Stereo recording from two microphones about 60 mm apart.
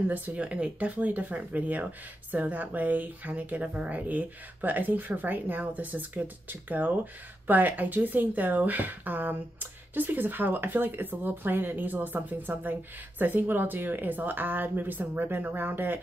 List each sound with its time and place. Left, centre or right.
0.1 s speech: right